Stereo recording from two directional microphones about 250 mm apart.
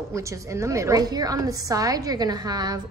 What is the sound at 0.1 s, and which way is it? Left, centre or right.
A woman's voice, centre.